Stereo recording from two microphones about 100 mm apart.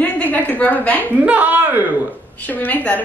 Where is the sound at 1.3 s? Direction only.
15° right (ahead or behind).